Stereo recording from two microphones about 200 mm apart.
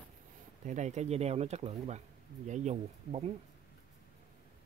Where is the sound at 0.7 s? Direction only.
35° right (ahead or behind).